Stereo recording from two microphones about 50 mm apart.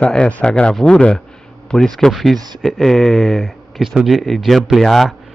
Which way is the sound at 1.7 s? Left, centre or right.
Centre.